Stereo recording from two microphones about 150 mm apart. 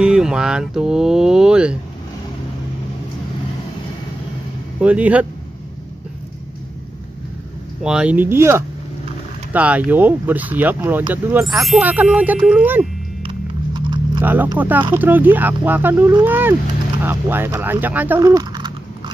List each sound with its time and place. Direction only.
0.0 s speech: 5° right (ahead or behind)
4.7 s speech: 10° right (ahead or behind)
7.8 s speech: 5° right (ahead or behind)
11.4 s speech: centre (ahead or behind)
13.2 s a sound: 35° right (ahead or behind)
14.2 s speech: 10° right (ahead or behind); by 19.1 s 30° right (ahead or behind)